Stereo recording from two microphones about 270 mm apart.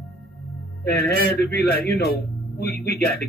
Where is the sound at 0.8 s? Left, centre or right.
Left.